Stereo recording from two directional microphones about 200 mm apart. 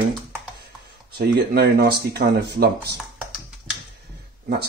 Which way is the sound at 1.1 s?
50° right (ahead or behind).